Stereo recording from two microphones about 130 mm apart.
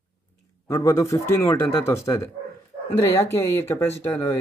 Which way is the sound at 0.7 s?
25° left (ahead or behind).